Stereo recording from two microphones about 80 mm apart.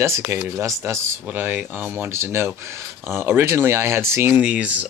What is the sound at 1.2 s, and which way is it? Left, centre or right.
Speech, right.